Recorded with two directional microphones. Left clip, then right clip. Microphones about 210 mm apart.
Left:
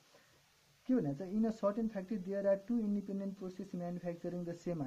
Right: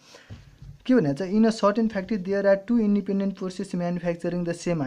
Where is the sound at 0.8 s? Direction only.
25° right (ahead or behind).